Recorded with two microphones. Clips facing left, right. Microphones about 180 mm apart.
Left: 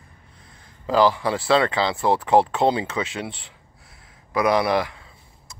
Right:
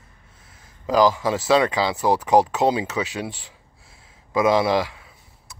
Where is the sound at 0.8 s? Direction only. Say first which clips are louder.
Right 1 dB; 15° right (ahead or behind).